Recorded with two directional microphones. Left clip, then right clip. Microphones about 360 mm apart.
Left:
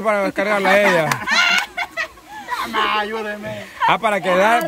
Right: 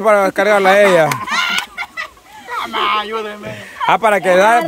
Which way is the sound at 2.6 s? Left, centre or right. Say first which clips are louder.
Right 3 dB; centre.